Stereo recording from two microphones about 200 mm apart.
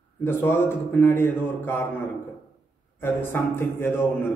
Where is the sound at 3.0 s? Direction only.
10° left (ahead or behind).